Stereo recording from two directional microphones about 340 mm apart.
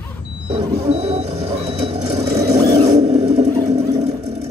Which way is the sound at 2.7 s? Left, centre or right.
Centre.